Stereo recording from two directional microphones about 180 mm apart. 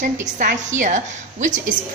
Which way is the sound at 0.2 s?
45° right (ahead or behind).